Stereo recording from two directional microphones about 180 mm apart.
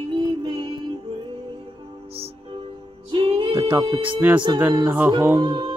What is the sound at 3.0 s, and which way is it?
Music, 30° right (ahead or behind).